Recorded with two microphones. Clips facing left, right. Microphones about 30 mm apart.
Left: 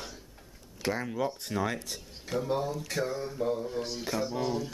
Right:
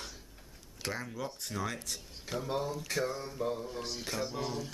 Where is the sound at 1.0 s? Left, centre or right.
Left.